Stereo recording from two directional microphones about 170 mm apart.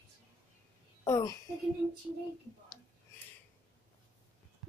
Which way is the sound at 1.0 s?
20° left (ahead or behind).